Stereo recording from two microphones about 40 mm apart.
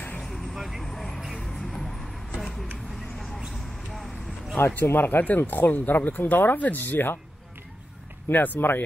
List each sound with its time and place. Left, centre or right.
0.2 s vehicle: centre
0.6 s vehicle: centre
0.8 s vehicle: centre
1.5 s music: centre
2.9 s a sound: centre
4.6 s speech: left
4.9 s speech: left
8.3 s speech: left